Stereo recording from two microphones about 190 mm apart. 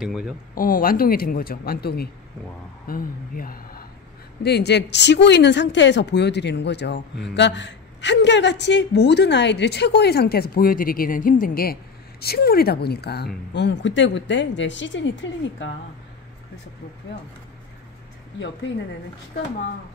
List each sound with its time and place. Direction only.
0.0 s speech: 5° right (ahead or behind)
0.6 s speech: 50° left (ahead or behind)
4.4 s a woman's voice: 60° left (ahead or behind)